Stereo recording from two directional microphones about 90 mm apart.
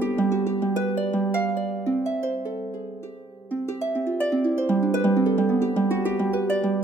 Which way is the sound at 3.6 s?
30° left (ahead or behind).